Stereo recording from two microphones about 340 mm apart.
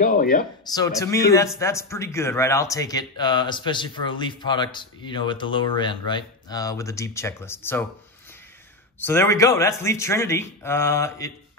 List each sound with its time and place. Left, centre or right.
0.0 s speech: left
0.7 s speech: centre
9.0 s speech: centre